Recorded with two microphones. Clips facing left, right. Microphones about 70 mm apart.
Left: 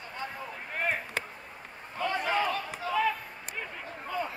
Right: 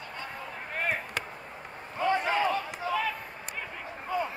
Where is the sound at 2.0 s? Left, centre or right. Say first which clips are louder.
Right 3 dB; right.